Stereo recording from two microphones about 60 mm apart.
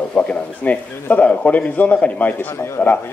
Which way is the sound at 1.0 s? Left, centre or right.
Left.